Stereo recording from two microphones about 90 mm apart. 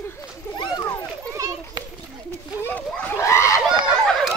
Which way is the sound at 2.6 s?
20° left (ahead or behind).